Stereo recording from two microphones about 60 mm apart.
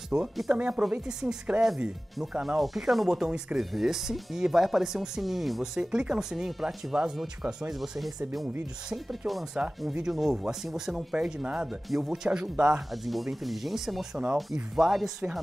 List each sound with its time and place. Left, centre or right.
0.1 s speech: right
0.7 s speech: centre
5.8 s speech: centre
9.6 s speech: centre
10.0 s speech: centre
12.9 s speech: centre